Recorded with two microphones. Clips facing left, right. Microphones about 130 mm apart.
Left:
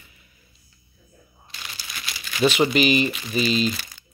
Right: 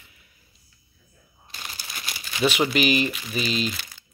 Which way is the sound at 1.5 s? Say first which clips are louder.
Even; 45° right (ahead or behind).